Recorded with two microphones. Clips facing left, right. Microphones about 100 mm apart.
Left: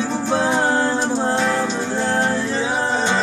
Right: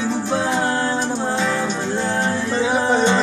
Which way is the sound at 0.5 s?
15° left (ahead or behind).